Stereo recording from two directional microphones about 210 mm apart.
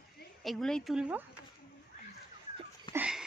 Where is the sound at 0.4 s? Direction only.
Centre (ahead or behind).